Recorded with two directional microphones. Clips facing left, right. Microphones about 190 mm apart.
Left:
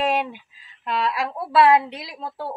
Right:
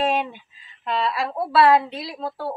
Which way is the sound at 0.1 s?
10° left (ahead or behind).